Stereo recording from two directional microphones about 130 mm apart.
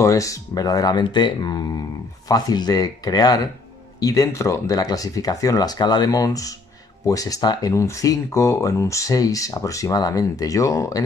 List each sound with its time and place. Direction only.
0.0 s speech: 25° left (ahead or behind)